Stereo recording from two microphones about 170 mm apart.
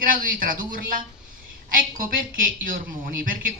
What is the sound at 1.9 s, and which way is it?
Speech, 55° right (ahead or behind).